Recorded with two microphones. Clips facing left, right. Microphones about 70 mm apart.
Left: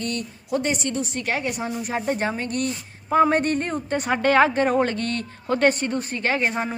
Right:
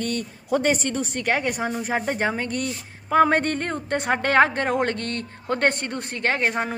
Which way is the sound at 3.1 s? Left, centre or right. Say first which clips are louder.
Even; right.